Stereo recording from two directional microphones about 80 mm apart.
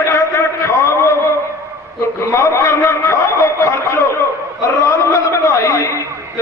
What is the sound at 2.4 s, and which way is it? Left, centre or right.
A man's voice, left.